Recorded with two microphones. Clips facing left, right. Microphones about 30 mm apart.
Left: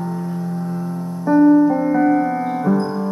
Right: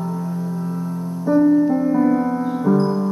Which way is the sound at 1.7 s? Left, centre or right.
Left.